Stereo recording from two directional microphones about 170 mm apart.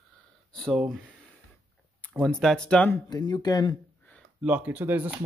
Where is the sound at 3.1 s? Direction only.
25° left (ahead or behind).